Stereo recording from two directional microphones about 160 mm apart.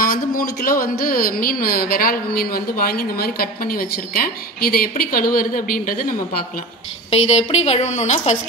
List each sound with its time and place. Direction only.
0.0 s speech: 60° left (ahead or behind)
7.1 s a woman's voice: 40° left (ahead or behind)